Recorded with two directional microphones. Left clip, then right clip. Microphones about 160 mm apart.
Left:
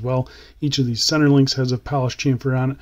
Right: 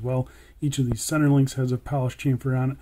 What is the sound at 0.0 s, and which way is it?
Speech, 25° left (ahead or behind).